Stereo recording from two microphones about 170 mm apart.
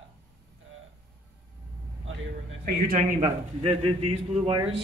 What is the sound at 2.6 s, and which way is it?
Speech, 55° right (ahead or behind).